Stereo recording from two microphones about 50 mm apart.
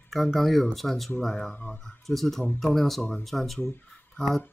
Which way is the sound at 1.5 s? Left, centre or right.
Left.